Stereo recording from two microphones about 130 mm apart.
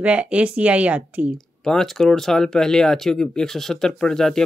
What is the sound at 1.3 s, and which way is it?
Speech, 5° left (ahead or behind).